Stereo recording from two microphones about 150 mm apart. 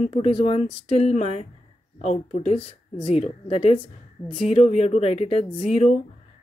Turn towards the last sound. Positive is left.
turn(degrees=40)  # may be behind; listen again after turning